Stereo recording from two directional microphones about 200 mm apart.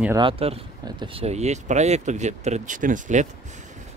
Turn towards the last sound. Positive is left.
turn(degrees=-40)  # may be behind; listen again after turning